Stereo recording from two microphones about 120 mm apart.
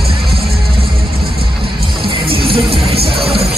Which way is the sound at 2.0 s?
45° right (ahead or behind).